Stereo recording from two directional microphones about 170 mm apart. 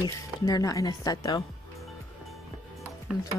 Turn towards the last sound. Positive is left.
turn(degrees=-5)  # may be behind; listen again after turning